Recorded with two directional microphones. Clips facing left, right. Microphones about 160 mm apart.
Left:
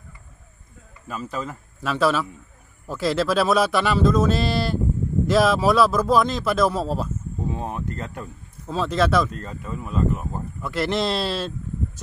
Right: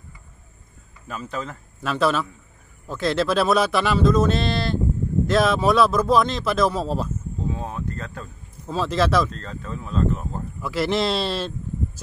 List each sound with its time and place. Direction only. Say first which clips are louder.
1.0 s speech: left 1 dB; 5° left (ahead or behind)
7.5 s a sound: left 1 dB; 15° left (ahead or behind)
8.6 s speech: even; centre (ahead or behind)
9.3 s speech: left 1 dB; 10° left (ahead or behind)
10.6 s speech: right 1 dB; centre (ahead or behind)